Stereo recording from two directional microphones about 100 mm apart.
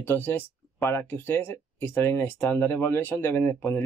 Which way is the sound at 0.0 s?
20° left (ahead or behind).